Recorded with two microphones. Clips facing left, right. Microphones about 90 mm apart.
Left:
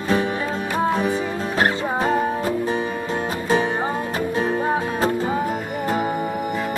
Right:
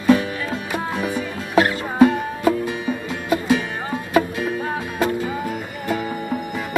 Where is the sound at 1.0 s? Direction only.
35° left (ahead or behind).